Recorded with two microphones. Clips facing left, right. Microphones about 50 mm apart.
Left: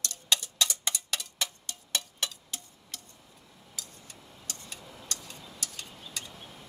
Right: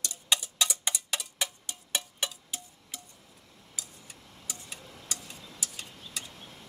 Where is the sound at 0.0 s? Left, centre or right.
Centre.